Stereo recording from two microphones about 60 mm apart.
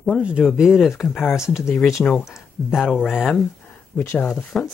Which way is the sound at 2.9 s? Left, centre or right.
Centre.